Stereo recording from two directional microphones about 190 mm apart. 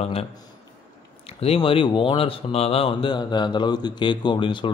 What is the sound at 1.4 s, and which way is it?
Speech, 30° left (ahead or behind).